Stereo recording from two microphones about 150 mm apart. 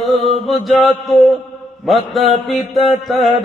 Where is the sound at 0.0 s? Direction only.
Centre (ahead or behind).